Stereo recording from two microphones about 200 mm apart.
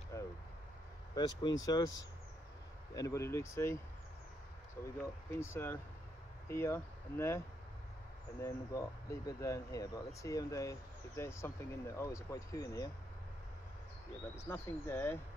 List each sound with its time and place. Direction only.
0.1 s a sound: 15° left (ahead or behind)
1.6 s speech: 20° left (ahead or behind)
5.0 s speech: 15° left (ahead or behind)
14.3 s speech: 15° left (ahead or behind)